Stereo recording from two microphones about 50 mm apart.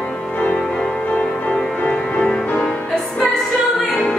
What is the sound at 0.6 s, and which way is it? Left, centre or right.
Music, centre.